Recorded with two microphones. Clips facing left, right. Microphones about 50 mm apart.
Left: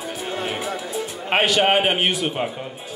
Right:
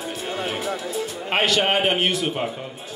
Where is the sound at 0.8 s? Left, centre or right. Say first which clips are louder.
Even; centre.